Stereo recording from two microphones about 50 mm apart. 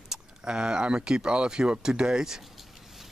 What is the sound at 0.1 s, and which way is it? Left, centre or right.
Speech, centre.